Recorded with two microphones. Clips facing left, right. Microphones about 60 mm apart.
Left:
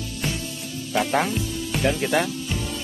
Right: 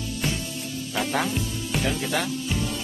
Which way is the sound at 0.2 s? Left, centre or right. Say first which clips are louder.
Left 1 dB; centre.